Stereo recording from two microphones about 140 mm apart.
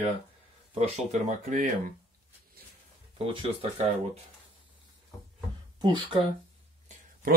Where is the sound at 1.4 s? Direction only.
70° right (ahead or behind).